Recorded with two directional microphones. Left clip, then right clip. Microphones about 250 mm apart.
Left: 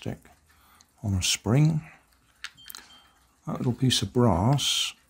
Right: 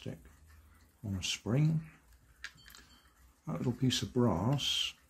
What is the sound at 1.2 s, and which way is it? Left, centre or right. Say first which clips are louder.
Speech: left 10 dB; left.